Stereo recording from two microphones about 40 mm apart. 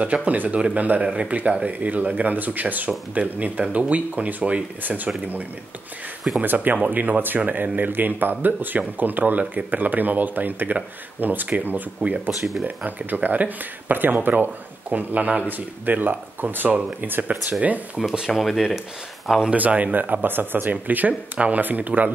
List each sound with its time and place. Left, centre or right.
0.0 s speech: right
1.0 s speech: right
1.7 s speech: right
6.4 s speech: right
12.3 s speech: centre
12.6 s speech: right
18.0 s speech: centre
18.3 s speech: centre
19.5 s speech: right
20.8 s speech: right